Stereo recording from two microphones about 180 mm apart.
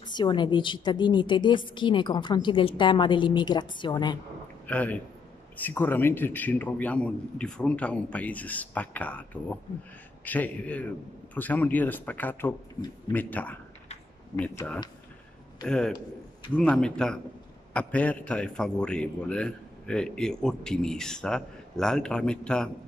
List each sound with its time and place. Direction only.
0.1 s a woman's voice: 25° left (ahead or behind)
4.6 s a man's voice: 10° left (ahead or behind)